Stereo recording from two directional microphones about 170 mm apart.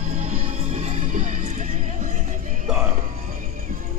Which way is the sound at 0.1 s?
35° right (ahead or behind).